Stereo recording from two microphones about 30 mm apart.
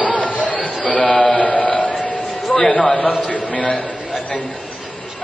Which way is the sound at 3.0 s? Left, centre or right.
Left.